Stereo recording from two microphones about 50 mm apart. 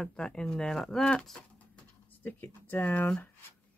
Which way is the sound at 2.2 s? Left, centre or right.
Left.